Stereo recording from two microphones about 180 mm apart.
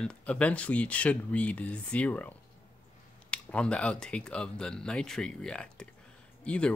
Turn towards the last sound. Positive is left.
turn(degrees=5)  # may be behind; listen again after turning